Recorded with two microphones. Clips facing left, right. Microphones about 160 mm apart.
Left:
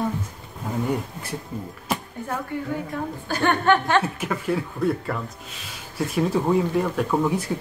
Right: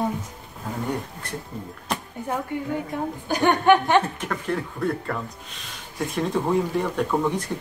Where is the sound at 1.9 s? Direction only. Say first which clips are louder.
Left 2 dB; 5° left (ahead or behind).